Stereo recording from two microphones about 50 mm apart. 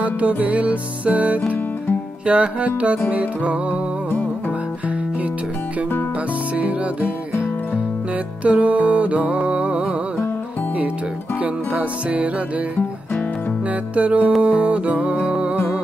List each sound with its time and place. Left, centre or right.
0.0 s music: right
8.5 s music: right
11.4 s music: right
13.9 s music: right